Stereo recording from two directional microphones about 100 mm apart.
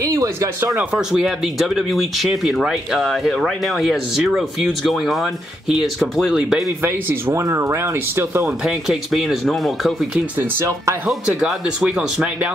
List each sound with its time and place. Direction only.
0.0 s speech: 35° right (ahead or behind)
0.7 s speech: 10° right (ahead or behind)
6.8 s speech: 20° right (ahead or behind)
8.6 s speech: 5° right (ahead or behind)